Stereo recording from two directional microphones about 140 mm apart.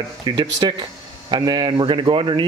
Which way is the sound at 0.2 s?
35° right (ahead or behind).